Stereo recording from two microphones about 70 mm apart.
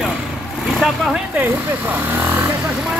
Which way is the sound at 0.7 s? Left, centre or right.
Centre.